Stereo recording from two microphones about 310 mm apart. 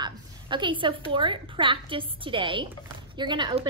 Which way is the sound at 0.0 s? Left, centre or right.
Centre.